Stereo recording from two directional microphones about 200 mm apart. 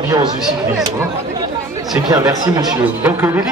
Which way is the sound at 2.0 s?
20° right (ahead or behind).